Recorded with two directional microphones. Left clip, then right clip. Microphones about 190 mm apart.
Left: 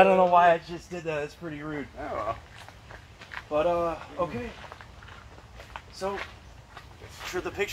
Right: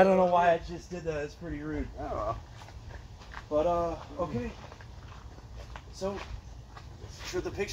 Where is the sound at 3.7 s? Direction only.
5° left (ahead or behind).